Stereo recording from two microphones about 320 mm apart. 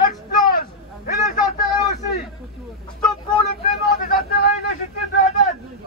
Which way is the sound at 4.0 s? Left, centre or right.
Left.